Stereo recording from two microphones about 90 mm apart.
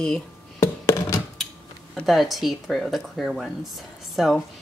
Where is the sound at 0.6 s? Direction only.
35° left (ahead or behind).